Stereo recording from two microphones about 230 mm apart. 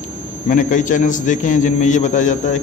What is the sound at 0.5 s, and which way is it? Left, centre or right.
A man's voice, left.